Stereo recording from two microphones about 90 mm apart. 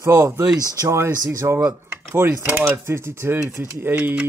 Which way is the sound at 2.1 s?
20° right (ahead or behind).